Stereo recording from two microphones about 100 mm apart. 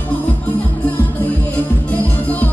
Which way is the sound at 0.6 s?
15° left (ahead or behind).